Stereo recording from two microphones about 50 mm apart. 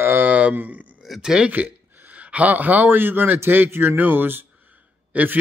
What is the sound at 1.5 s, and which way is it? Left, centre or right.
A man's voice, right.